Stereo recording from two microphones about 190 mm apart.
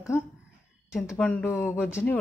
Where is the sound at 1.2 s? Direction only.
10° left (ahead or behind).